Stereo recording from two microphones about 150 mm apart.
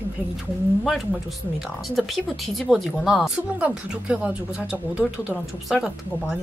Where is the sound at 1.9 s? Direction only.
Centre (ahead or behind).